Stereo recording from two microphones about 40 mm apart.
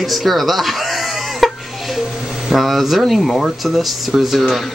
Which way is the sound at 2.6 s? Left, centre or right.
Centre.